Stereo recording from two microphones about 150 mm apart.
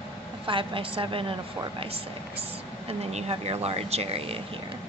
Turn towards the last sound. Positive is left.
turn(degrees=-40)  # may be behind; listen again after turning